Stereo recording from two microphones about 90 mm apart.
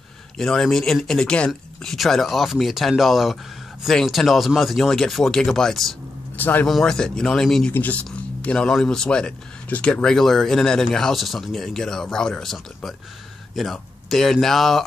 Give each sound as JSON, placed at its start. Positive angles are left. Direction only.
{"t": 0.4, "sound": "speech", "side_deg": 5}
{"t": 6.3, "sound": "speech", "side_deg": 20}
{"t": 6.7, "sound": "speech", "side_deg": 5}
{"t": 7.7, "sound": "speech", "side_deg": 20}